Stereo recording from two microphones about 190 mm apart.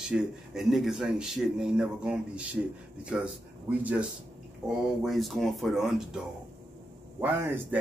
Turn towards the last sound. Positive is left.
turn(degrees=-10)  # may be behind; listen again after turning